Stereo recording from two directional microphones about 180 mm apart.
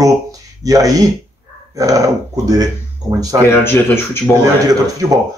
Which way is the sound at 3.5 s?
15° left (ahead or behind).